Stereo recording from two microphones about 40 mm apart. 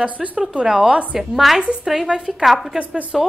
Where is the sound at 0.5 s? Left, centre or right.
Centre.